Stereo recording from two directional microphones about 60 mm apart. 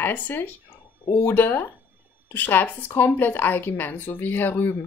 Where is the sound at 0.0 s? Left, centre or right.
Left.